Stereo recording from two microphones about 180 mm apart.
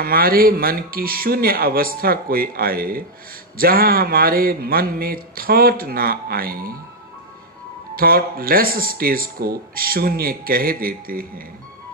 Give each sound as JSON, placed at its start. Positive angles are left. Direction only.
{"t": 0.0, "sound": "speech", "side_deg": -55}
{"t": 7.9, "sound": "speech", "side_deg": -55}